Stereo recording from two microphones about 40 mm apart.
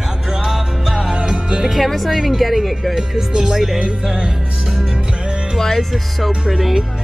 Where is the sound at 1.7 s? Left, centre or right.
Centre.